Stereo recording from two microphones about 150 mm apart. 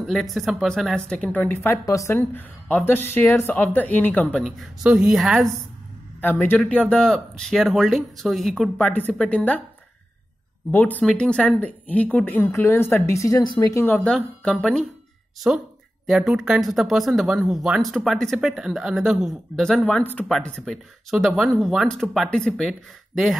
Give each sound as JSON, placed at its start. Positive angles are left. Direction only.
{"t": 0.0, "sound": "speech", "side_deg": 0}
{"t": 4.4, "sound": "speech", "side_deg": 0}
{"t": 6.2, "sound": "speech", "side_deg": 15}
{"t": 10.7, "sound": "speech", "side_deg": 10}
{"t": 13.8, "sound": "speech", "side_deg": 10}
{"t": 15.5, "sound": "speech", "side_deg": -5}
{"t": 19.9, "sound": "speech", "side_deg": 10}